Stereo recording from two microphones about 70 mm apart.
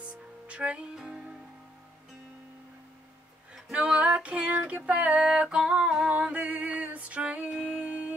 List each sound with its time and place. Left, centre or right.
0.5 s music: centre
3.7 s female singing: centre
5.0 s music: centre